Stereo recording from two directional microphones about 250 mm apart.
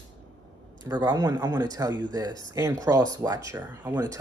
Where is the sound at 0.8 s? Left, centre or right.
Centre.